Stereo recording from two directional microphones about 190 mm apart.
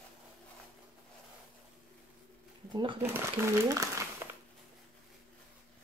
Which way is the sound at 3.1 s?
15° right (ahead or behind).